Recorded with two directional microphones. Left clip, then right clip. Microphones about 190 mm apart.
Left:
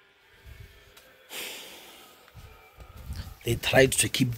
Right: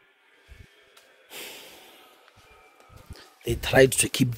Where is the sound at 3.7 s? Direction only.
45° right (ahead or behind).